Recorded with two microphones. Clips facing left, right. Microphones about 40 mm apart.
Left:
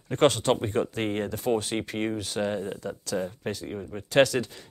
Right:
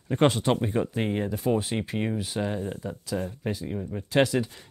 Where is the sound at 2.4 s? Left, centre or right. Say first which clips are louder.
Left 2 dB; centre.